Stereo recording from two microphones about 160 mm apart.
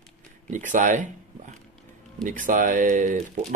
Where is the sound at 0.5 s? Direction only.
55° right (ahead or behind).